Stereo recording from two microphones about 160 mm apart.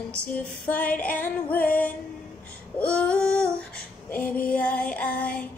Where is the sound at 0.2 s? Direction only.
10° left (ahead or behind).